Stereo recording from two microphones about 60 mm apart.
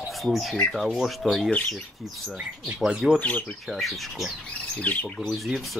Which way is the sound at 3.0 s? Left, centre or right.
Centre.